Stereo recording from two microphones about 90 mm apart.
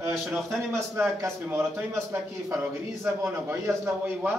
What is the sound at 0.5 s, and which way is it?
Speech, 25° right (ahead or behind).